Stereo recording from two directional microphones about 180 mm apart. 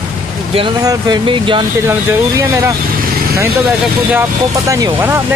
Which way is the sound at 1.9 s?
15° right (ahead or behind).